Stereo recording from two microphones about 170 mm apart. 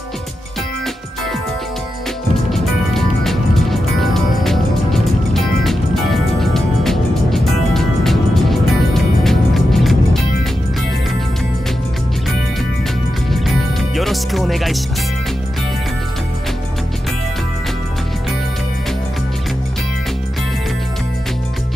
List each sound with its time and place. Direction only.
2.5 s music: centre (ahead or behind)
13.3 s music: centre (ahead or behind)